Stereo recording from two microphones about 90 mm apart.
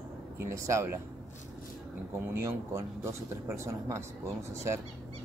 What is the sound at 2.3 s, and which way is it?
Speech, 30° right (ahead or behind).